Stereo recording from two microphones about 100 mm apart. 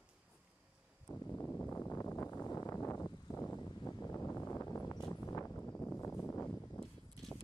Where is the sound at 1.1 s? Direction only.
30° left (ahead or behind); by 6.0 s 15° left (ahead or behind).